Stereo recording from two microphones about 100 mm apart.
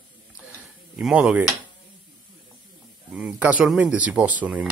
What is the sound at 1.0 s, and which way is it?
Speech, 10° right (ahead or behind).